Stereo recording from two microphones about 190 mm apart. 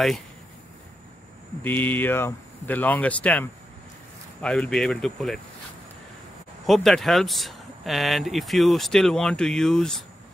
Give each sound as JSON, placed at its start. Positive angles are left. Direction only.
{"t": 1.6, "sound": "speech", "side_deg": 10}
{"t": 6.6, "sound": "speech", "side_deg": 0}